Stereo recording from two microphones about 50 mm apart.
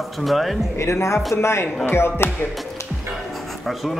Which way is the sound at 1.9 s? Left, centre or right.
Left.